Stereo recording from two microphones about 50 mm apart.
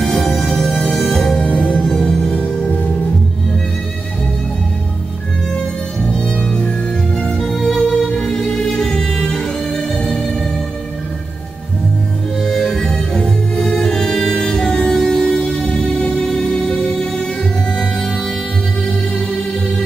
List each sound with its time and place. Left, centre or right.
0.0 s music: centre
1.5 s music: left
1.9 s music: centre
7.2 s music: centre
9.9 s music: centre
12.4 s music: centre